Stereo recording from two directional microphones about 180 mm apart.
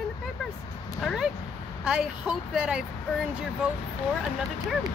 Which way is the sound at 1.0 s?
Centre (ahead or behind).